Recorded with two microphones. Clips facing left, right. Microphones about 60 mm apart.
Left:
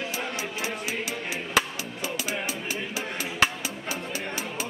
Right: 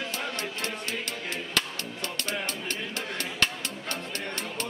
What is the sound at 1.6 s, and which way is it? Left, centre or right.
Music, centre.